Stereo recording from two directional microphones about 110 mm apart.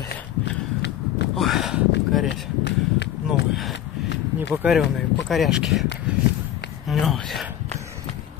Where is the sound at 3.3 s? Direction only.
Centre (ahead or behind).